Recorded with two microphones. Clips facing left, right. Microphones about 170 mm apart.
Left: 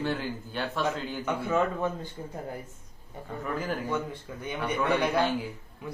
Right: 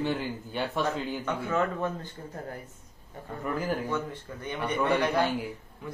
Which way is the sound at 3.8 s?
10° left (ahead or behind).